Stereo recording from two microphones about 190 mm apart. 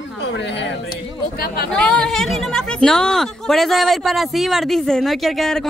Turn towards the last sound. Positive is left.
turn(degrees=0)  # may be behind; listen again after turning